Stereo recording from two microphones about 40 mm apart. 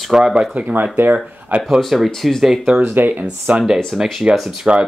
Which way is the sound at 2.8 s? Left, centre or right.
Right.